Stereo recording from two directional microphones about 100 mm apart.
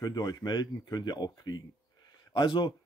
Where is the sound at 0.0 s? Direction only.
40° left (ahead or behind).